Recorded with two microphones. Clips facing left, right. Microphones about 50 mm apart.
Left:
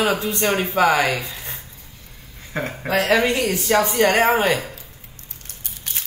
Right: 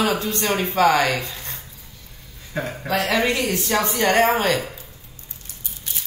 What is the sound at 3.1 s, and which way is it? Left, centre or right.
Speech, left.